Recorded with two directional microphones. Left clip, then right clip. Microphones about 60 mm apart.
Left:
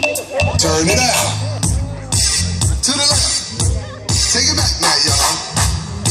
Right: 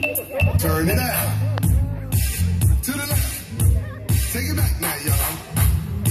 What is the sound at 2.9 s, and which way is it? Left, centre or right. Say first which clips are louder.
Music: left 13 dB; right.